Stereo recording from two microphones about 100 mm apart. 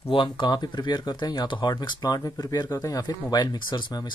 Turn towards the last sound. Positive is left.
turn(degrees=50)  # may be behind; listen again after turning